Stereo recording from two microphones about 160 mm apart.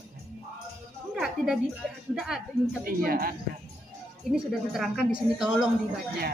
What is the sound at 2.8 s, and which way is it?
Speech, 65° right (ahead or behind).